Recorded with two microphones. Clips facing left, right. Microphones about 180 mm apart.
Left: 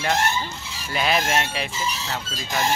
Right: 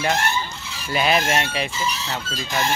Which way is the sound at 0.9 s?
5° right (ahead or behind).